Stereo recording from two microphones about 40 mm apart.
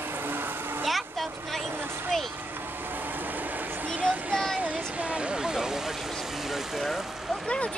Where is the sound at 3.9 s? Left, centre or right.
Right; by 5.9 s centre.